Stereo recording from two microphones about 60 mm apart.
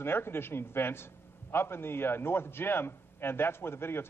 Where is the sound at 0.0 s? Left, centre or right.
Left.